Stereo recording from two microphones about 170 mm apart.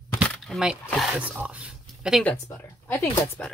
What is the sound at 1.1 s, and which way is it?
Speech, 10° right (ahead or behind).